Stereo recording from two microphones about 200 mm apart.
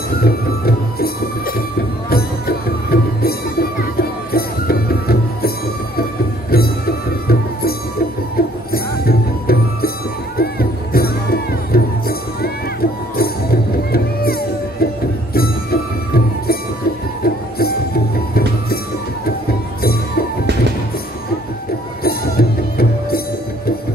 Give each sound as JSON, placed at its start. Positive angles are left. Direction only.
{"t": 0.2, "sound": "music", "side_deg": 50}
{"t": 6.5, "sound": "music", "side_deg": 50}
{"t": 19.8, "sound": "music", "side_deg": 50}
{"t": 22.0, "sound": "music", "side_deg": 50}